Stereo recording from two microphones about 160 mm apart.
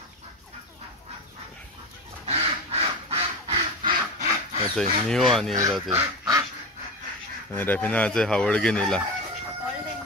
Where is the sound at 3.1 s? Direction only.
40° right (ahead or behind).